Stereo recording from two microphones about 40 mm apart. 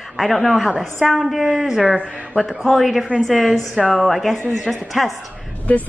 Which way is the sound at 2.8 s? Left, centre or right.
Centre.